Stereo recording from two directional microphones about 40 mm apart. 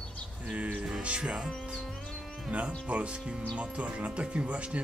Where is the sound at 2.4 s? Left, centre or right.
Right.